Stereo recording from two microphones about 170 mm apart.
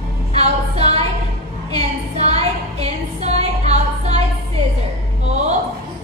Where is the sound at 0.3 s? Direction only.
40° right (ahead or behind).